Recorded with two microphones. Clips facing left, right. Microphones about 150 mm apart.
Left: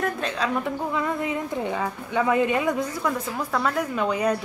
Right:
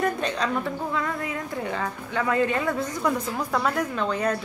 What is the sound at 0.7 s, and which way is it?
Speech, 20° left (ahead or behind).